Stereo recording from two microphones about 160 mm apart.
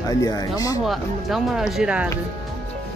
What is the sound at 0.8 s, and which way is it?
Speech, centre (ahead or behind).